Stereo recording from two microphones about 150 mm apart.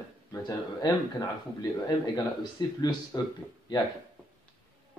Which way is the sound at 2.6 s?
30° left (ahead or behind).